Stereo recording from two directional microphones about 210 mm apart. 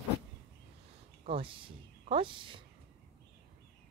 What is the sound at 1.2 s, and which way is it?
Speech, 25° right (ahead or behind).